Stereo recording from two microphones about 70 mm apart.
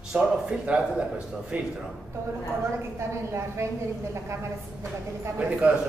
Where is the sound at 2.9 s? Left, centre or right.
Right.